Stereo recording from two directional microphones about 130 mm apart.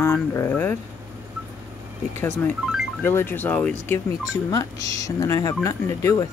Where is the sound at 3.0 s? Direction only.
20° left (ahead or behind).